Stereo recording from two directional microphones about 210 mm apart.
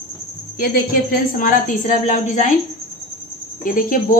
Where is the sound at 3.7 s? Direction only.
40° left (ahead or behind).